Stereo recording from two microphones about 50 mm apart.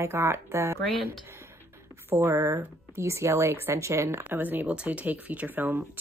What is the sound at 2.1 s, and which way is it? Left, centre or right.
Speech, right.